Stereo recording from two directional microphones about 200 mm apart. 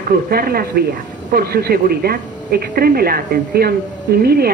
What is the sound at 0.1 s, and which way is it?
Speech, 50° right (ahead or behind).